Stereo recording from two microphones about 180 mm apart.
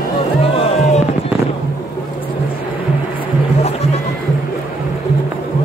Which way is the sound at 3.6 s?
35° left (ahead or behind).